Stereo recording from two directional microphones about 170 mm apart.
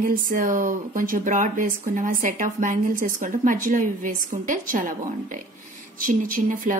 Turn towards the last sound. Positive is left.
turn(degrees=-50)  # may be behind; listen again after turning